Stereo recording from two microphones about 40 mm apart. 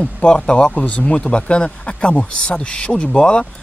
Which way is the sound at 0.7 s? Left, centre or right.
Left.